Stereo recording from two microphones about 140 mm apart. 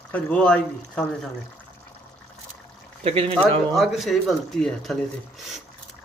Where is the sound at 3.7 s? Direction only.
Centre (ahead or behind).